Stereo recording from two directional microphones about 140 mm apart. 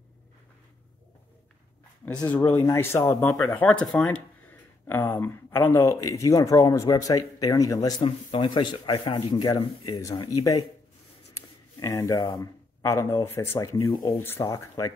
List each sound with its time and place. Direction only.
2.3 s speech: 10° left (ahead or behind)
5.1 s speech: 15° left (ahead or behind)
8.0 s speech: 35° left (ahead or behind)